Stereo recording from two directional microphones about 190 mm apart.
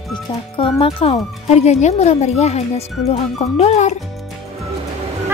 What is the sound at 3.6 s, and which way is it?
Speech, 35° left (ahead or behind).